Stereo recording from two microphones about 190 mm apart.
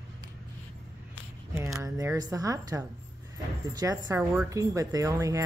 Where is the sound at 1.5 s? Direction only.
15° right (ahead or behind).